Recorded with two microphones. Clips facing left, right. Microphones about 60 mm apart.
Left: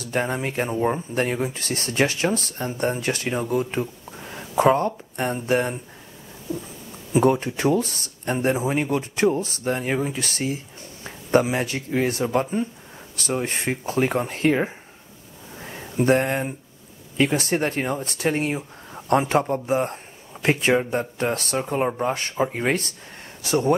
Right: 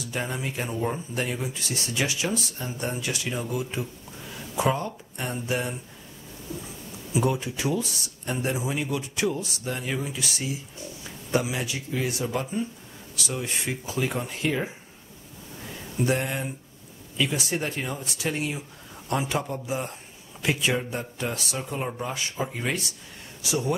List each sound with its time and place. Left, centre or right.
0.0 s speech: left
7.1 s speech: left
15.6 s a sound: left
16.0 s speech: left
22.1 s speech: left